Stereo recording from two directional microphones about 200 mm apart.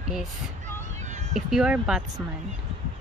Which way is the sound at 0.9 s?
35° right (ahead or behind).